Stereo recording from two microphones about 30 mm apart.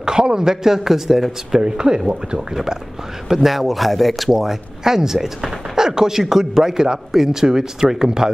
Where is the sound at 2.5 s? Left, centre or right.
Centre.